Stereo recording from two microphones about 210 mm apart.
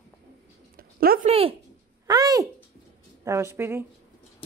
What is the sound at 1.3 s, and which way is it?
Speech, 25° right (ahead or behind).